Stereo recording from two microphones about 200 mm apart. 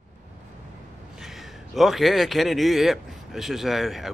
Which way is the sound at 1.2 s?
Centre (ahead or behind).